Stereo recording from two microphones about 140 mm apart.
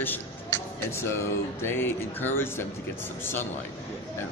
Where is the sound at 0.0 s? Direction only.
15° left (ahead or behind).